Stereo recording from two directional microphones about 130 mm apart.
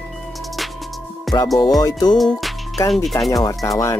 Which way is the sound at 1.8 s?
30° left (ahead or behind).